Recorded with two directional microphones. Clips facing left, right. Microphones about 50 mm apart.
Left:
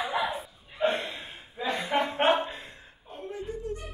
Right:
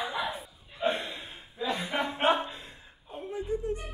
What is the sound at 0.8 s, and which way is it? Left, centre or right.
Gasp, left.